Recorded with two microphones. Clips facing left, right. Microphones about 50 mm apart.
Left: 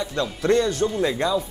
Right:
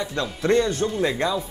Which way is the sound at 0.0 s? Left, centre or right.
Right.